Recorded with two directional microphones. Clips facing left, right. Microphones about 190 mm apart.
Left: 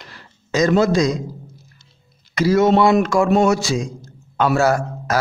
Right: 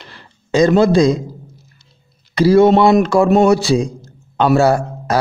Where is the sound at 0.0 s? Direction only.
30° right (ahead or behind).